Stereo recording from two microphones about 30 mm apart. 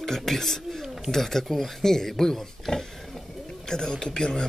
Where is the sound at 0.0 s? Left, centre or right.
Centre.